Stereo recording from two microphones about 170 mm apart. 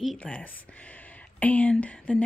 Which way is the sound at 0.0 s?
5° left (ahead or behind).